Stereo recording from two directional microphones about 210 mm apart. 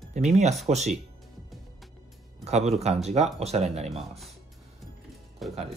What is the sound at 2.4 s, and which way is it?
Speech, 30° right (ahead or behind).